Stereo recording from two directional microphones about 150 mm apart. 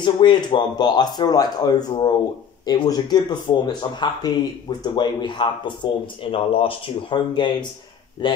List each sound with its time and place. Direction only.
0.0 s speech: 30° left (ahead or behind)